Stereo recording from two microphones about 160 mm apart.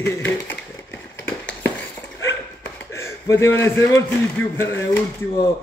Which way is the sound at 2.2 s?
15° left (ahead or behind).